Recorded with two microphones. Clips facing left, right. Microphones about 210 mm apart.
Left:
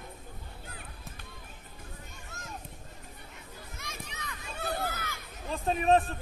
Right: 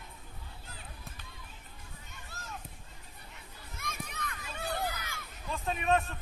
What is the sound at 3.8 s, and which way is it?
Children playing, 55° right (ahead or behind).